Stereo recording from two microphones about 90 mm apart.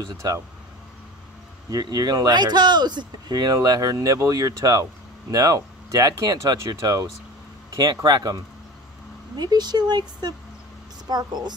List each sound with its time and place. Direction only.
1.7 s speech: 45° right (ahead or behind)
9.4 s speech: 50° right (ahead or behind)